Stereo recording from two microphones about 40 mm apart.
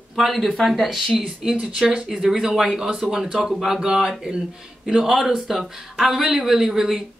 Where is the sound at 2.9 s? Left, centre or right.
Right.